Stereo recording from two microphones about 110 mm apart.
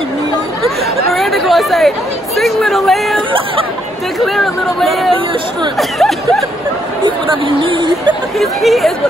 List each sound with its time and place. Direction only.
0.7 s speech: centre (ahead or behind)
4.2 s speech: centre (ahead or behind)
7.0 s speech: 50° right (ahead or behind)
8.4 s speech: centre (ahead or behind)